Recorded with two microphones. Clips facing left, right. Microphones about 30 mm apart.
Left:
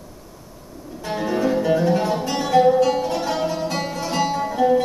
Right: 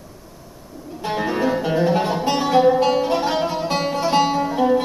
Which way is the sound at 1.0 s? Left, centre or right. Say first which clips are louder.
Right 1 dB; right.